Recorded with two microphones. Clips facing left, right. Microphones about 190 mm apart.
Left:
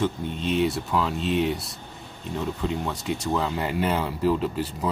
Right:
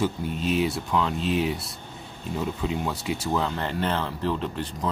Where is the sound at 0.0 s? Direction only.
5° right (ahead or behind).